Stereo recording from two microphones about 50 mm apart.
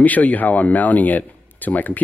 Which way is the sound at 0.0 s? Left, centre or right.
Left.